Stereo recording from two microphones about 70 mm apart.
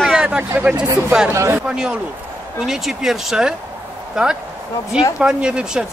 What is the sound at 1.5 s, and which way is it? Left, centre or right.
Speech, centre.